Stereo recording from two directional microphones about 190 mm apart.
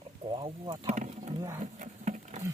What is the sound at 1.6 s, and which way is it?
Sewing machine, 40° right (ahead or behind).